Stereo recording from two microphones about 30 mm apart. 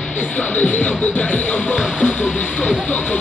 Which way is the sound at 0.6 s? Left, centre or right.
Left.